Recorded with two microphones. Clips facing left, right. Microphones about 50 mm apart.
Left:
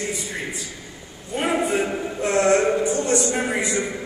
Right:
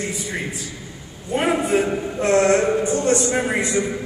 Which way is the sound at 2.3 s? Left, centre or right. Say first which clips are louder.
Right 2 dB; centre.